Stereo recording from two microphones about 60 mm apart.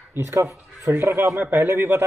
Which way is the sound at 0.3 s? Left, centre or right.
Right.